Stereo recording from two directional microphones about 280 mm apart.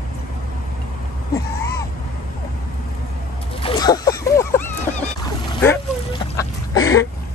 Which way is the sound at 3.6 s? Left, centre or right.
Centre.